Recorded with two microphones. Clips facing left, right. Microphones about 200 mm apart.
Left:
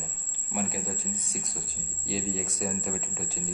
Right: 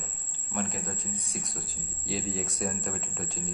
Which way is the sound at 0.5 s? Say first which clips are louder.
Left 2 dB; 10° left (ahead or behind).